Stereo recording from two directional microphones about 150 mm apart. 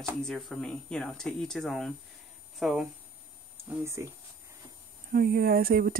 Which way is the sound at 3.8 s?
20° right (ahead or behind).